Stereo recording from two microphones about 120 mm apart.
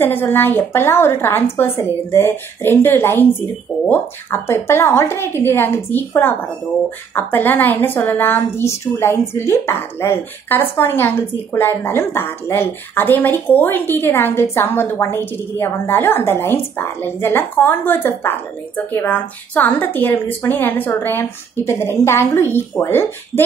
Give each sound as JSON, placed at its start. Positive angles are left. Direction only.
{"t": 0.0, "sound": "a woman's voice", "side_deg": 15}